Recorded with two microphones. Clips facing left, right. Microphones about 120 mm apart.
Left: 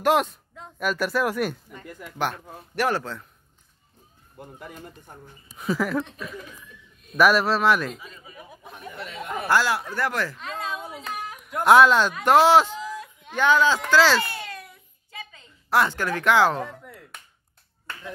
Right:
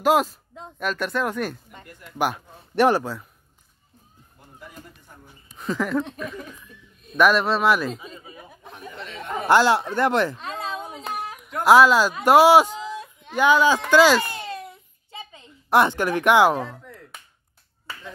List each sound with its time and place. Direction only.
0.0 s speech: centre (ahead or behind)
2.1 s speech: 10° right (ahead or behind)
2.7 s speech: 25° right (ahead or behind)
3.0 s speech: 10° right (ahead or behind)
4.6 s speech: 55° left (ahead or behind)
5.6 s speech: 5° left (ahead or behind)
7.9 s speech: 25° right (ahead or behind)
8.6 s chatter: 5° left (ahead or behind)
9.5 s speech: 25° right (ahead or behind)
10.4 s a sound: 30° right (ahead or behind)
11.5 s speech: centre (ahead or behind)
13.8 s a sound: 15° right (ahead or behind)
16.8 s chop: 5° left (ahead or behind)